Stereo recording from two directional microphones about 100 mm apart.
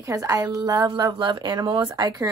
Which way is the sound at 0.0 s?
35° right (ahead or behind).